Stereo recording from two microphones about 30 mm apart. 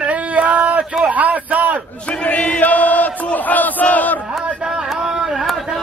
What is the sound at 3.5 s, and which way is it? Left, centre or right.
Battle cry, left.